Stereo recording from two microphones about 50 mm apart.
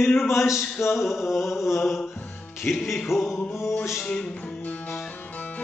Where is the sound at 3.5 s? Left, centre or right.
Left.